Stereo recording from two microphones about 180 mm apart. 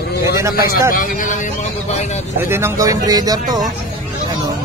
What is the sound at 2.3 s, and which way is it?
Speech, 15° right (ahead or behind).